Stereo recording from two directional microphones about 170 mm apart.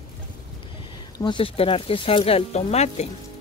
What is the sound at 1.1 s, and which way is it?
Speech, 30° left (ahead or behind).